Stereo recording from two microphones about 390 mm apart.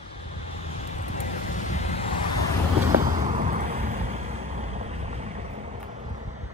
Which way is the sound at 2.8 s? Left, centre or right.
Centre.